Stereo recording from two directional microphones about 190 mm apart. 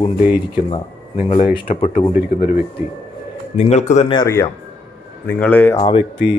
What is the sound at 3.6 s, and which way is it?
Speech, 35° left (ahead or behind).